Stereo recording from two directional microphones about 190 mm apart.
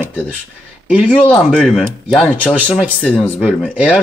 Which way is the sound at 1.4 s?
Centre (ahead or behind).